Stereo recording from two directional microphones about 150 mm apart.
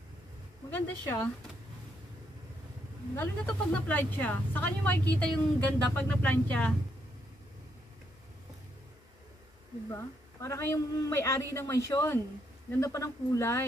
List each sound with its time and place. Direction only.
0.7 s speech: 15° left (ahead or behind)
3.2 s speech: 10° left (ahead or behind)
9.8 s speech: 20° left (ahead or behind)